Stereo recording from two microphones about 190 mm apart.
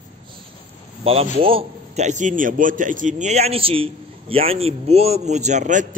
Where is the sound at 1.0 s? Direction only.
30° right (ahead or behind).